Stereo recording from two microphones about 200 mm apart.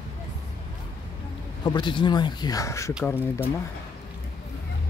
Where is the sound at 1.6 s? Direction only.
20° left (ahead or behind).